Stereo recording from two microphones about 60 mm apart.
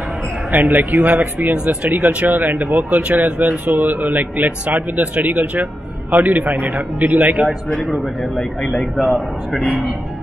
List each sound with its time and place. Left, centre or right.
0.5 s speech: right
7.9 s a man's voice: centre